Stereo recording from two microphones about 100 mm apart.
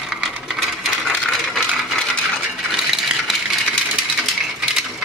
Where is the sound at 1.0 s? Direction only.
Centre (ahead or behind).